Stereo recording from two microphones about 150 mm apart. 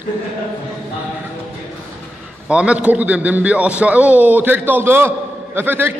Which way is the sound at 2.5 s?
5° right (ahead or behind).